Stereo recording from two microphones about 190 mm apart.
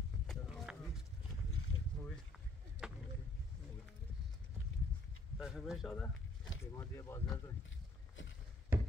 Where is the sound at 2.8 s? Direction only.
5° right (ahead or behind).